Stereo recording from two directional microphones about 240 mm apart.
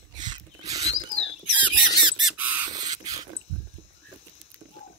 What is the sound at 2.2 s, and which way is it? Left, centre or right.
Crow, centre.